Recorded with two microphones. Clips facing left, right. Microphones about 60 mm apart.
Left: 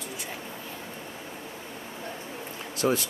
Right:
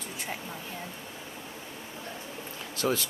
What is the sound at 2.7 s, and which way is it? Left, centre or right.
Speech, left.